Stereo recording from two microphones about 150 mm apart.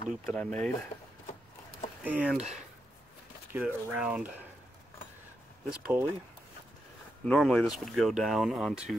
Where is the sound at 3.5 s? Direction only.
10° right (ahead or behind).